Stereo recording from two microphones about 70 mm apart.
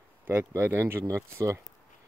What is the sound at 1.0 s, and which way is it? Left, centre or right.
Speech, right.